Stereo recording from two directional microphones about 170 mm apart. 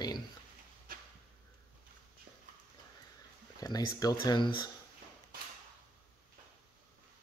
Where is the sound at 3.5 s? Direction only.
20° left (ahead or behind).